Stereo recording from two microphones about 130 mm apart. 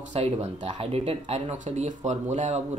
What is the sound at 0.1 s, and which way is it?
Speech, 50° right (ahead or behind).